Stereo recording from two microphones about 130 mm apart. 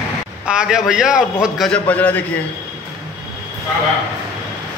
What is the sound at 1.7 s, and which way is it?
Speech, 10° left (ahead or behind).